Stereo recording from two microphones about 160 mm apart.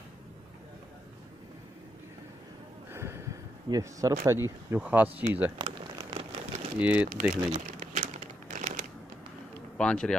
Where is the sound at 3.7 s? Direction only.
20° right (ahead or behind).